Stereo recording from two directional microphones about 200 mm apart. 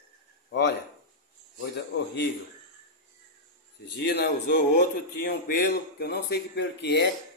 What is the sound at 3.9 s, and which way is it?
Speech, 60° left (ahead or behind).